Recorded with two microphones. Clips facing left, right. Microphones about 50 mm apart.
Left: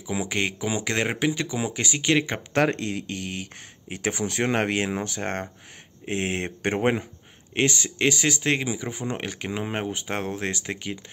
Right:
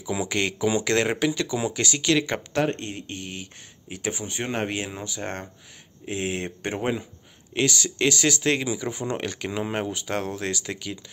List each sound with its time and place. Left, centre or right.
0.0 s speech: centre
2.6 s speech: left
7.5 s speech: left